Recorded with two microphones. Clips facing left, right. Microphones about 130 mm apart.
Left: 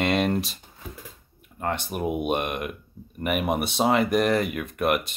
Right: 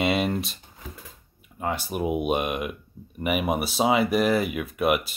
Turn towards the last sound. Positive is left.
turn(degrees=-5)  # may be behind; listen again after turning